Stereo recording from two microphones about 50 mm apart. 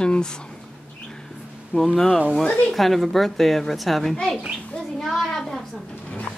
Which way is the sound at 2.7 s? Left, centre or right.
Centre.